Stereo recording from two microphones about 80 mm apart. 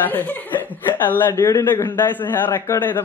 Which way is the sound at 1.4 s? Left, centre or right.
Left.